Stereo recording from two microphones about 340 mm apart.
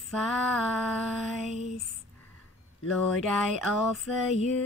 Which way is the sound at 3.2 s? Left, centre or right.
Centre.